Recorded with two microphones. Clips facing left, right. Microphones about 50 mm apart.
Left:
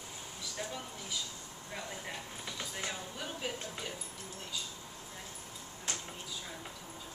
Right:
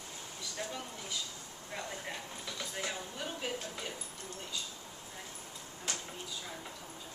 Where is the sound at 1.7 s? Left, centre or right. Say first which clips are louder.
Right 1 dB; centre.